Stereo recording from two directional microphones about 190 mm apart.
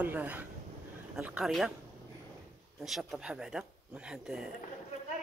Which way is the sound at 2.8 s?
Centre (ahead or behind).